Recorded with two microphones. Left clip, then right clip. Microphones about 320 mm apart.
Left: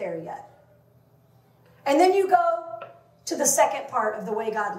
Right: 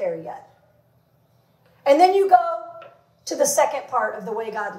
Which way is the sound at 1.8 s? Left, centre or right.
Right.